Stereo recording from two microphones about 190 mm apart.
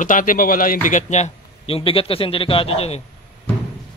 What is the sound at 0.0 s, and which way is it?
A man's voice, 45° left (ahead or behind).